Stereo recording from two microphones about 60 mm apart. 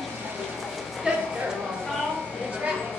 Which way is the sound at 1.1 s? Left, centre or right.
Centre.